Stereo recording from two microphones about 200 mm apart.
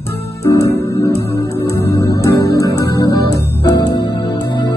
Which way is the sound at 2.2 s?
15° left (ahead or behind).